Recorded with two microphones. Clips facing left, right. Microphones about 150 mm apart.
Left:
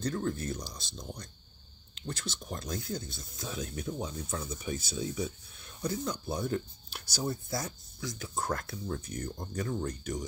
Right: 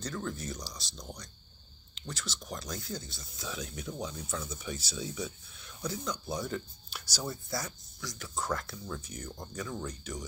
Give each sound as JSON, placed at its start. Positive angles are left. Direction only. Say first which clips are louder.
{"t": 0.0, "sound": "speech", "louder": "left 5 dB", "side_deg": 50}
{"t": 2.0, "sound": "speech", "louder": "left 2 dB", "side_deg": 50}